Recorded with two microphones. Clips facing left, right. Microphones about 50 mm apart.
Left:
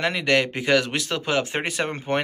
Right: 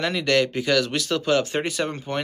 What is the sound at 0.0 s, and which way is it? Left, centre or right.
Speech, left.